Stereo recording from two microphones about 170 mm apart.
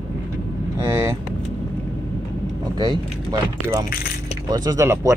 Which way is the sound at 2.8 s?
25° right (ahead or behind).